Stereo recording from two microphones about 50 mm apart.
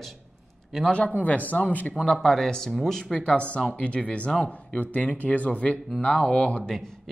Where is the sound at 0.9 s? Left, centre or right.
Left.